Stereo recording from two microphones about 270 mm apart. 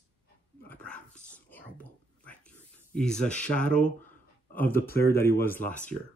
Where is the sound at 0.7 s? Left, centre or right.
Centre.